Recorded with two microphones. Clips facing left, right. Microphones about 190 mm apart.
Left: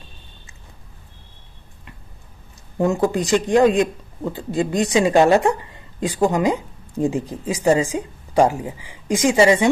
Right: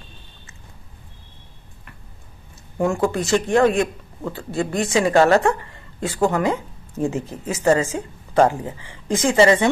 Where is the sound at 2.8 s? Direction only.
20° left (ahead or behind).